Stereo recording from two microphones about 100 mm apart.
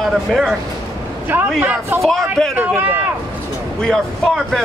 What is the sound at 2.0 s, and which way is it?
Speech, 5° left (ahead or behind).